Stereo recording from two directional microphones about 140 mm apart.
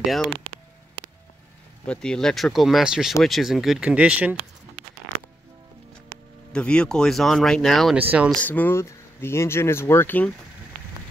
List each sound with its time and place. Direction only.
0.0 s speech: centre (ahead or behind)
1.9 s speech: 5° left (ahead or behind)
6.5 s speech: 5° left (ahead or behind)
8.0 s speech: 10° right (ahead or behind)
8.3 s speech: 10° left (ahead or behind)